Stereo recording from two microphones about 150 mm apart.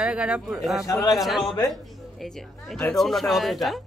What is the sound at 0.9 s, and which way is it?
Speech, 25° left (ahead or behind).